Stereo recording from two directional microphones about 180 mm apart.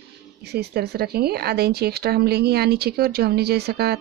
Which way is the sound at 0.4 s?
65° right (ahead or behind).